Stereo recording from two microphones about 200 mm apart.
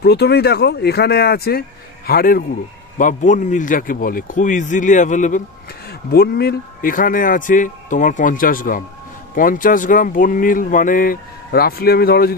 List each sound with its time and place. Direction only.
0.0 s speech: 55° left (ahead or behind); by 5.4 s 40° left (ahead or behind)
5.9 s speech: 50° left (ahead or behind)